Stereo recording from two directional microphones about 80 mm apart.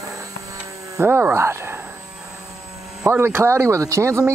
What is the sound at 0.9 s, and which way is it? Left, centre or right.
Speech, right.